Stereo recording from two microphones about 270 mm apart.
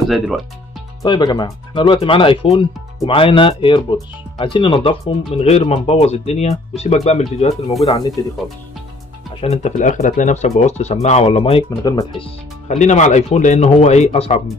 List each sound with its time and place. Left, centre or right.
1.0 s speech: centre
9.4 s speech: left
12.6 s speech: left